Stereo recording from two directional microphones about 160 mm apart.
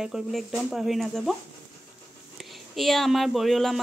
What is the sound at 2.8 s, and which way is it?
Speech, centre (ahead or behind).